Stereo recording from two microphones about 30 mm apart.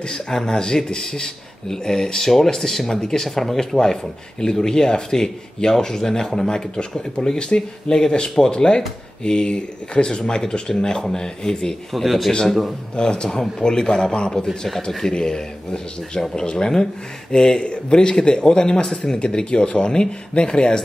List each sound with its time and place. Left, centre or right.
0.1 s speech: left
3.3 s a man's voice: centre
3.5 s speech: centre
11.9 s a man's voice: centre
12.9 s speech: left
14.9 s speech: centre
15.1 s speech: left